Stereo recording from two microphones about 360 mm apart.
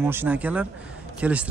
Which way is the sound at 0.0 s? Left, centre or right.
Centre.